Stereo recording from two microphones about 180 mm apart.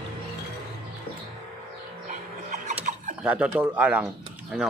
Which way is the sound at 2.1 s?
45° right (ahead or behind).